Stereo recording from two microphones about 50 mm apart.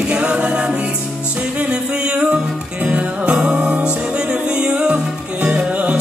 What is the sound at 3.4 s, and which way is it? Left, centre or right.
Music, centre.